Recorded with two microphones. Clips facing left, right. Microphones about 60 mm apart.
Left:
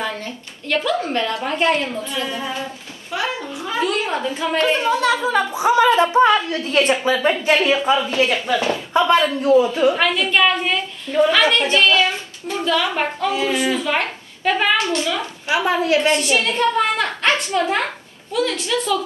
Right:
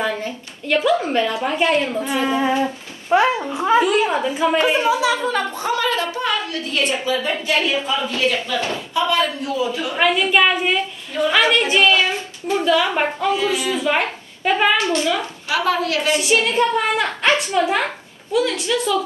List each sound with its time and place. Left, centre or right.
0.0 s speech: centre
3.1 s a child's voice: right
3.8 s speech: centre
5.7 s a woman's voice: left
9.9 s speech: centre
12.0 s child singing: right
12.6 s speech: centre
15.5 s a woman's voice: left
16.1 s a woman's voice: centre